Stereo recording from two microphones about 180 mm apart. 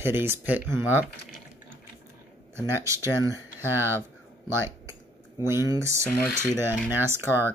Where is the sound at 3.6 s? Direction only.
15° right (ahead or behind).